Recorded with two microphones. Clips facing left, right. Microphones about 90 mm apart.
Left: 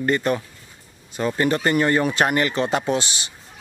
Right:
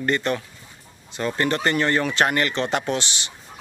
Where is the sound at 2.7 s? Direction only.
35° left (ahead or behind).